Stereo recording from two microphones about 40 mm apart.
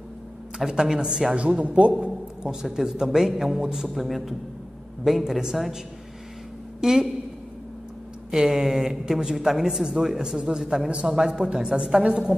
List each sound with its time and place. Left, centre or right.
0.7 s speech: centre
1.3 s a man's voice: right
2.0 s a man's voice: centre
6.8 s a woman's voice: centre
8.3 s a woman's voice: centre